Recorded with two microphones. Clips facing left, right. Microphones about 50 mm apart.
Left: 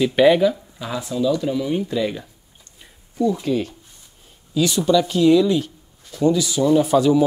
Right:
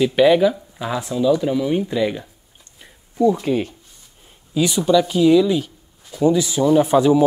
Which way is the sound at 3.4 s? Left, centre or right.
Right.